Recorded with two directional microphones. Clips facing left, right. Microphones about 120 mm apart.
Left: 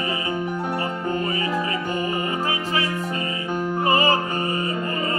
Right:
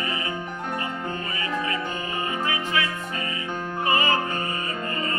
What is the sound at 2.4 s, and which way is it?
Music, 35° left (ahead or behind).